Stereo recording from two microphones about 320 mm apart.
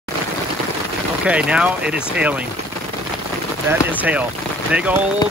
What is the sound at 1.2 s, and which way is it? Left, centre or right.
Speech, centre.